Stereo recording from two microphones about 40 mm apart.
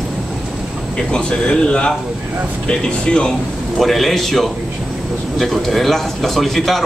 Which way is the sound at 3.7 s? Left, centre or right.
Centre.